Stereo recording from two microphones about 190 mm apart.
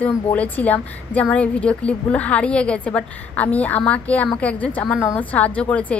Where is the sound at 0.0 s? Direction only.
5° left (ahead or behind).